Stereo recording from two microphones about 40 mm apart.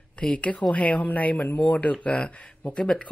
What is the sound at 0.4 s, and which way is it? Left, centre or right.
Speech, left.